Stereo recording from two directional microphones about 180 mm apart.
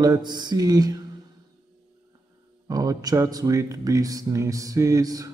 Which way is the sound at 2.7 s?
20° right (ahead or behind).